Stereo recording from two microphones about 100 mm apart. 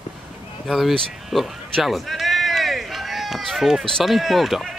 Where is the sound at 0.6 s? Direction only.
Centre (ahead or behind).